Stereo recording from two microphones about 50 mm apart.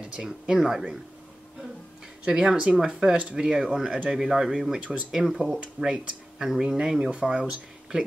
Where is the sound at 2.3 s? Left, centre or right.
Centre.